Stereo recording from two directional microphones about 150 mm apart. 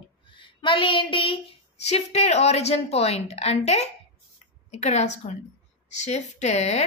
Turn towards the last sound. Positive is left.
turn(degrees=50)  # may be behind; listen again after turning